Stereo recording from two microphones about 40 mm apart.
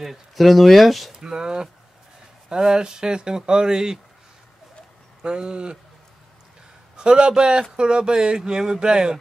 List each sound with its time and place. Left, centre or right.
0.0 s speech: centre
1.1 s speech: centre
5.2 s speech: right
7.0 s speech: right